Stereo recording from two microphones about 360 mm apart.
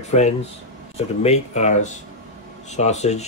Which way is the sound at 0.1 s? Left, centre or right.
Centre.